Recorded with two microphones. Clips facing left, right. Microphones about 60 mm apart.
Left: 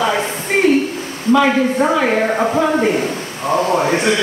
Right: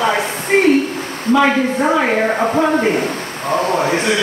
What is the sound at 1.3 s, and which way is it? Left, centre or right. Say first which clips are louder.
Speech: even; centre.